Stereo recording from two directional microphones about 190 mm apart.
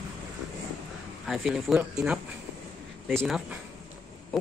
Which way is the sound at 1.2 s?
Centre (ahead or behind).